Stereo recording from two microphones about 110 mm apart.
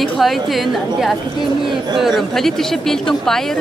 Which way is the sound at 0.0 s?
Centre (ahead or behind).